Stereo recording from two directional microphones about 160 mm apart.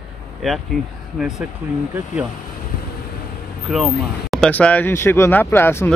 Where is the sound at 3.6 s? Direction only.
Centre (ahead or behind).